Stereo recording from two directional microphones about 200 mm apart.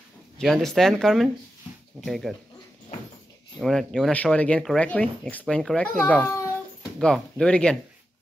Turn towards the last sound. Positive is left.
turn(degrees=5)  # may be behind; listen again after turning